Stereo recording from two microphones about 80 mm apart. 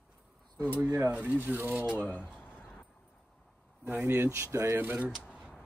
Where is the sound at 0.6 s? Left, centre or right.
Centre.